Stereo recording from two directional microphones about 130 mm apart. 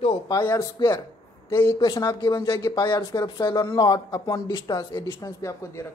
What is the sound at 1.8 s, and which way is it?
Speech, 30° left (ahead or behind).